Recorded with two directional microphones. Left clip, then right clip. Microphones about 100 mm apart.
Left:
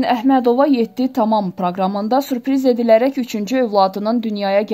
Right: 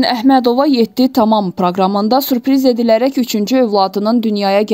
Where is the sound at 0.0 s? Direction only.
35° right (ahead or behind).